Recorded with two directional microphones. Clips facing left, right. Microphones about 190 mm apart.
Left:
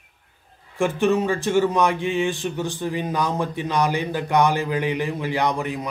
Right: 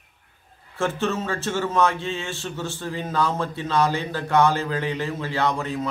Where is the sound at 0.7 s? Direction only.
15° left (ahead or behind).